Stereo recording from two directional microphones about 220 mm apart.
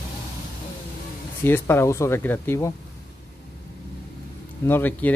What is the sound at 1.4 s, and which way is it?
Speech, 10° left (ahead or behind).